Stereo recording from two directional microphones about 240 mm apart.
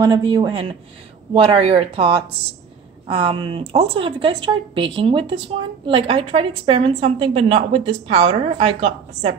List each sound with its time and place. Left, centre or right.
0.0 s a woman's voice: centre